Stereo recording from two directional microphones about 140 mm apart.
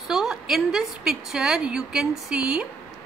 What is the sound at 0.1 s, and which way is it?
A woman's voice, centre (ahead or behind).